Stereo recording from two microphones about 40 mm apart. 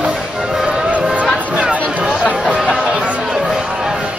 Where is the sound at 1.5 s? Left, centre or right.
Right.